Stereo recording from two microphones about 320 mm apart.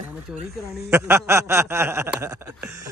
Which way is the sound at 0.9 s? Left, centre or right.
Centre.